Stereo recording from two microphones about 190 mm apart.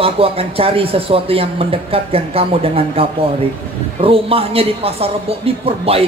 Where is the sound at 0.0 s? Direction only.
30° right (ahead or behind).